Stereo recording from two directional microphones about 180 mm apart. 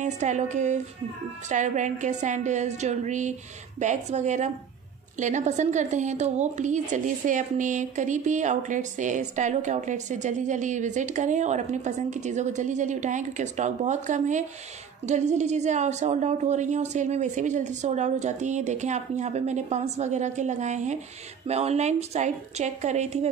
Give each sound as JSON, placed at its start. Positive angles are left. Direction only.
{"t": 0.0, "sound": "a woman's voice", "side_deg": -40}